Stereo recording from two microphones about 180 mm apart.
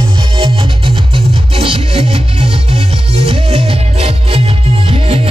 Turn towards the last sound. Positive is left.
turn(degrees=-30)  # may be behind; listen again after turning